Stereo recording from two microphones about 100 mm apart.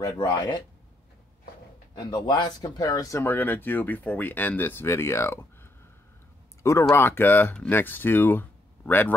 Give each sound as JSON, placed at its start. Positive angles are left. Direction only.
{"t": 0.0, "sound": "speech", "side_deg": 35}
{"t": 2.0, "sound": "speech", "side_deg": 50}
{"t": 3.3, "sound": "speech", "side_deg": 20}